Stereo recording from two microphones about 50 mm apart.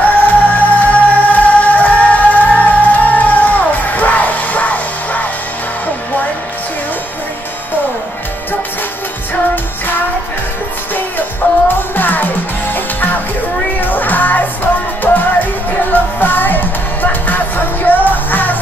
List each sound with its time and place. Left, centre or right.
0.1 s music: left
11.4 s music: left